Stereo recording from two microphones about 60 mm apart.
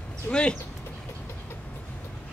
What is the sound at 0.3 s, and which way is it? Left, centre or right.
Speech, centre.